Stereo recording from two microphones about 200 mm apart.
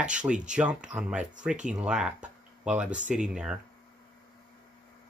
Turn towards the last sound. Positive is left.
turn(degrees=-5)  # may be behind; listen again after turning